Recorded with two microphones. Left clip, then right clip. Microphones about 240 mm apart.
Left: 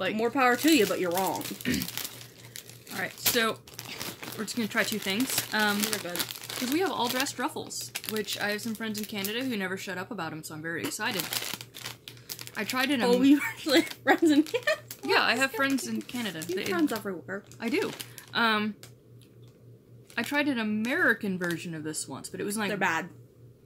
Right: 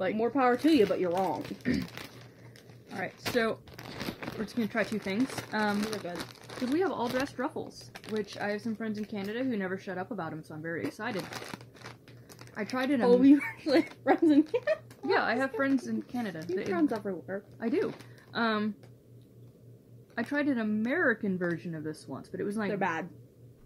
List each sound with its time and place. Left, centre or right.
0.0 s speech: centre
3.7 s crumpling: right
4.5 s speech: centre
11.2 s crumpling: centre
12.5 s speech: centre
20.2 s speech: centre